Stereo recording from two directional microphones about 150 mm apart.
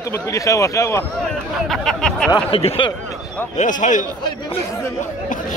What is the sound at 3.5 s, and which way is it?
Speech, 55° left (ahead or behind).